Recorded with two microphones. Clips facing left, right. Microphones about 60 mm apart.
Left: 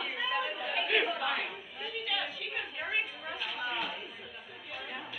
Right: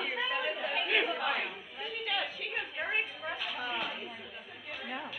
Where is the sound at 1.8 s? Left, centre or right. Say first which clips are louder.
Right 1 dB; right.